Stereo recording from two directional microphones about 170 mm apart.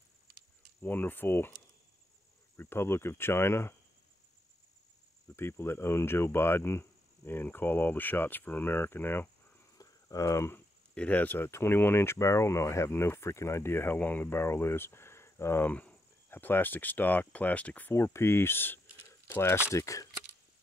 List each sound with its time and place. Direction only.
0.8 s speech: 10° left (ahead or behind)
5.3 s speech: 15° left (ahead or behind)